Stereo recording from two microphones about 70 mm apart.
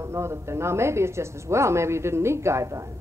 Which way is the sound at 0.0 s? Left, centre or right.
Right.